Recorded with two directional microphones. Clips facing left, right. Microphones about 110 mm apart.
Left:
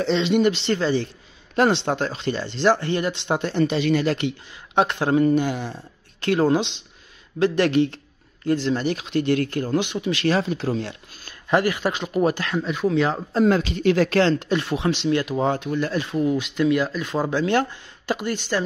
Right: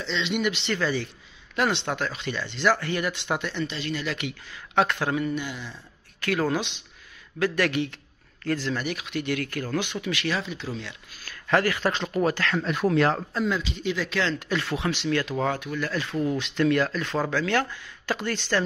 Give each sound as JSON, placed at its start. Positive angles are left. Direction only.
{"t": 0.0, "sound": "speech", "side_deg": 50}
{"t": 0.3, "sound": "speech", "side_deg": 35}
{"t": 3.6, "sound": "speech", "side_deg": 60}
{"t": 4.0, "sound": "speech", "side_deg": 40}
{"t": 4.3, "sound": "speech", "side_deg": 25}
{"t": 6.2, "sound": "speech", "side_deg": 25}
{"t": 10.2, "sound": "speech", "side_deg": 40}
{"t": 11.2, "sound": "speech", "side_deg": 20}
{"t": 12.6, "sound": "speech", "side_deg": 0}
{"t": 13.4, "sound": "speech", "side_deg": 50}
{"t": 14.4, "sound": "speech", "side_deg": 25}